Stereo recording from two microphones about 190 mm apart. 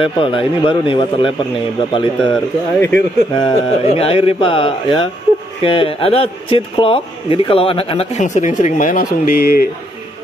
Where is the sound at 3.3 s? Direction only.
25° left (ahead or behind); by 9.7 s 50° left (ahead or behind).